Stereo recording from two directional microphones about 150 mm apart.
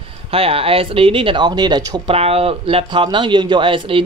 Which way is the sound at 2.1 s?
40° right (ahead or behind).